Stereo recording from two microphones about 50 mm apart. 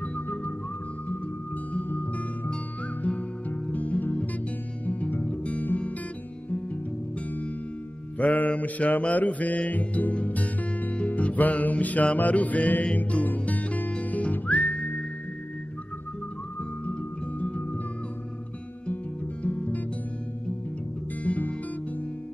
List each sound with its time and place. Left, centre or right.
0.0 s music: left
2.0 s music: left
8.2 s music: left
17.4 s music: left
19.4 s music: left
21.2 s music: left